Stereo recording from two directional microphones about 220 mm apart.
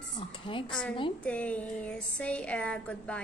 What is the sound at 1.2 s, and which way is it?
A woman's voice, 5° left (ahead or behind).